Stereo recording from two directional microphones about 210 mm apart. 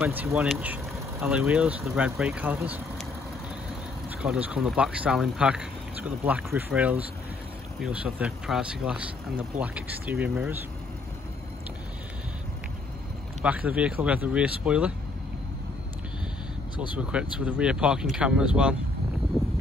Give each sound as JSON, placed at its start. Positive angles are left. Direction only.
{"t": 0.0, "sound": "speech", "side_deg": -10}
{"t": 4.2, "sound": "speech", "side_deg": -5}
{"t": 13.4, "sound": "speech", "side_deg": -5}
{"t": 16.7, "sound": "speech", "side_deg": 20}
{"t": 17.5, "sound": "speech", "side_deg": -5}